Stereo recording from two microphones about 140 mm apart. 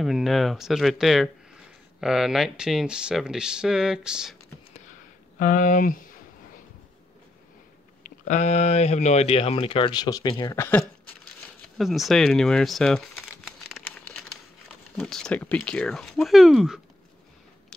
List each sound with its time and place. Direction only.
0.0 s speech: centre (ahead or behind)
5.4 s speech: 70° left (ahead or behind)
8.0 s speech: 60° left (ahead or behind); by 10.5 s 30° left (ahead or behind)
10.5 s speech: 20° left (ahead or behind)
11.6 s crumpling: centre (ahead or behind)
14.7 s speech: 5° left (ahead or behind)